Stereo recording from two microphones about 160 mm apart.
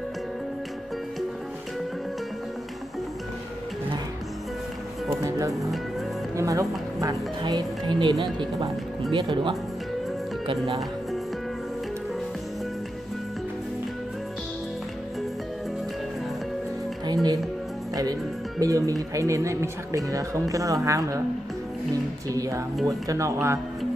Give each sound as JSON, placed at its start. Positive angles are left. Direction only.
{"t": 5.5, "sound": "music", "side_deg": 0}
{"t": 6.3, "sound": "speech", "side_deg": -20}
{"t": 17.0, "sound": "music", "side_deg": -25}
{"t": 18.6, "sound": "speech", "side_deg": -20}
{"t": 22.3, "sound": "speech", "side_deg": -20}